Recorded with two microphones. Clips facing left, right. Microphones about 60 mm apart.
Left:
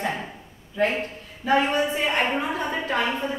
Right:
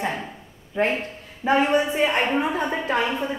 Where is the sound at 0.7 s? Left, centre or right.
Right.